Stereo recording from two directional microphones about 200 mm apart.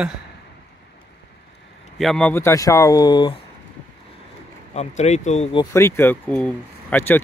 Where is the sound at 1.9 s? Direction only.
Centre (ahead or behind); by 3.3 s 20° left (ahead or behind).